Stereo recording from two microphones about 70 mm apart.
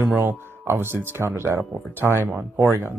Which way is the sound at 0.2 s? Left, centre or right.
Right.